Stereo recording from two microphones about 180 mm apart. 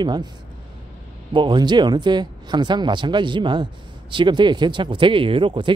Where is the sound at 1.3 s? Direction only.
25° right (ahead or behind).